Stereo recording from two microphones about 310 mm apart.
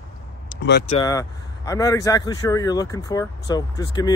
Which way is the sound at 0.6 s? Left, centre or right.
Left.